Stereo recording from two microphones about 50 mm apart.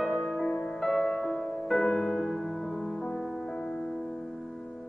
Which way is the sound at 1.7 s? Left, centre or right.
Centre.